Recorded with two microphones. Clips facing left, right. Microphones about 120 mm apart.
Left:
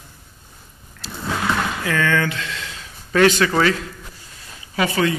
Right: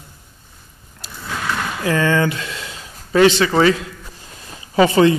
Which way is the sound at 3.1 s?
25° right (ahead or behind).